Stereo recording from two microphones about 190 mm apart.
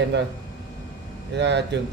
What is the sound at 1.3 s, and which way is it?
Speech, 65° right (ahead or behind).